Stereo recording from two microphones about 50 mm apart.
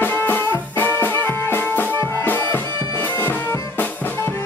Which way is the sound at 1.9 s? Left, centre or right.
Left.